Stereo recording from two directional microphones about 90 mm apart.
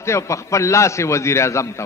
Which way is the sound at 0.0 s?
35° left (ahead or behind).